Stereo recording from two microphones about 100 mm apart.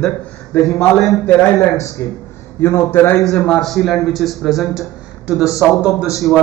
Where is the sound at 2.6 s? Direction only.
25° left (ahead or behind).